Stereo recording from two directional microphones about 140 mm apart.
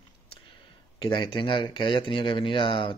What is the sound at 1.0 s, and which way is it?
Speech, 35° left (ahead or behind).